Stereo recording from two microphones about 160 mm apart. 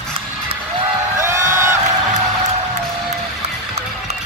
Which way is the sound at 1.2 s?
15° right (ahead or behind).